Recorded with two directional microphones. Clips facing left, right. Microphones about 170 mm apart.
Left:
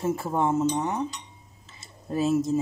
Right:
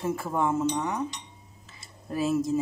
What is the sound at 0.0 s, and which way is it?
Speech, 25° left (ahead or behind).